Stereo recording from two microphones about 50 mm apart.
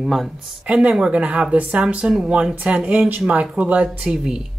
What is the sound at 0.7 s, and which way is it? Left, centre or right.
Speech, centre.